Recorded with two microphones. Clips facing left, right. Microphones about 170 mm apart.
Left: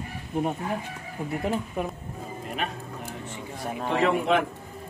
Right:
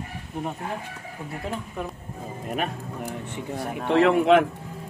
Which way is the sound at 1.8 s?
15° left (ahead or behind).